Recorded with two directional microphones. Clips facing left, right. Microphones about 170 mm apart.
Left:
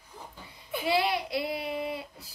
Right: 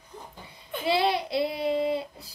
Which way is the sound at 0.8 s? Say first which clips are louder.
Right 3 dB; 25° right (ahead or behind).